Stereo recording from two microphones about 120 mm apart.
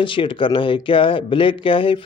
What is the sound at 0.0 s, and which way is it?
Speech, 45° left (ahead or behind).